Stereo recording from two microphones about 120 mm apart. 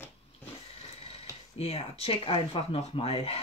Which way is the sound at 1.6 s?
55° left (ahead or behind).